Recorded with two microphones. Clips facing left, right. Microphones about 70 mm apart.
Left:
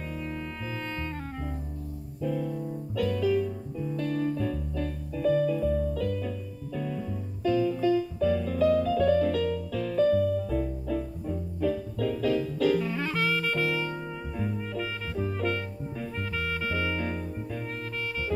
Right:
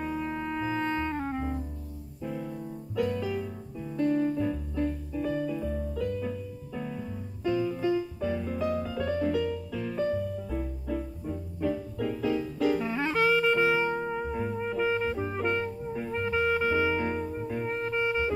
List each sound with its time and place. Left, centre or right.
0.1 s music: right